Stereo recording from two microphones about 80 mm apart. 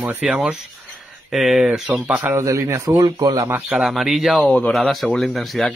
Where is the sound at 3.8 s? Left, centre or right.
Centre.